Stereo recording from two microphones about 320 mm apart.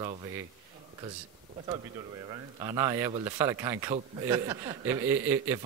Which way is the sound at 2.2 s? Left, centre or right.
Centre.